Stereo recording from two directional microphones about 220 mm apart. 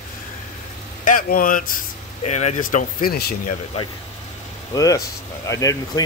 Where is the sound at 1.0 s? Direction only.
40° left (ahead or behind).